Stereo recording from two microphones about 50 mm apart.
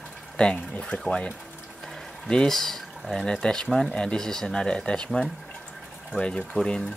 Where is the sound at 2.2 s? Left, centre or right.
Centre.